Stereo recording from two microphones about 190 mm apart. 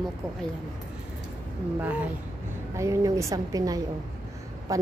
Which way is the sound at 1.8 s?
10° right (ahead or behind).